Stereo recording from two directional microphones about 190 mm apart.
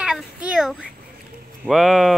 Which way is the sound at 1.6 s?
Centre (ahead or behind).